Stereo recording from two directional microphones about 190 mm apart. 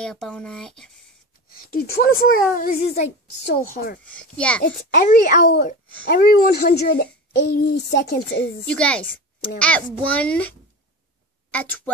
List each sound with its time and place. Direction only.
0.0 s speech: 5° left (ahead or behind)
1.5 s speech: 50° left (ahead or behind)
4.0 s a child's voice: 5° left (ahead or behind)
4.9 s speech: 45° left (ahead or behind)
5.4 s speech: 60° left (ahead or behind)
8.6 s a child's voice: 5° left (ahead or behind)
11.5 s a child's voice: 10° left (ahead or behind)